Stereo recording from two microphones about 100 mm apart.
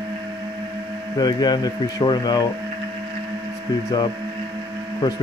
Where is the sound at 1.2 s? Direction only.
45° left (ahead or behind).